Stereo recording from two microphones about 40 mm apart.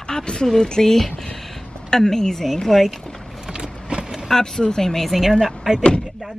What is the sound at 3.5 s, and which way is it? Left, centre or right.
Vehicle, right.